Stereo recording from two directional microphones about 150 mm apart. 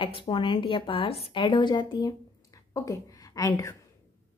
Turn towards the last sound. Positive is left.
turn(degrees=20)  # may be behind; listen again after turning